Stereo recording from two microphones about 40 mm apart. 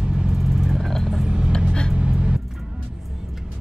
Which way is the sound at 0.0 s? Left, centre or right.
Right.